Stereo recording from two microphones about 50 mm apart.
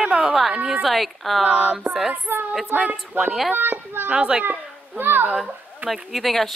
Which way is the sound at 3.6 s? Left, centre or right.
Right.